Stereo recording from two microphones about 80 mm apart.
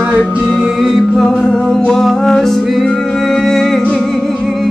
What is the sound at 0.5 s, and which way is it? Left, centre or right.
Music, centre.